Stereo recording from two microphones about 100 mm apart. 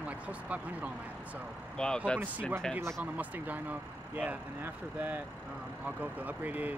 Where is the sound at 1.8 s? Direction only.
5° left (ahead or behind).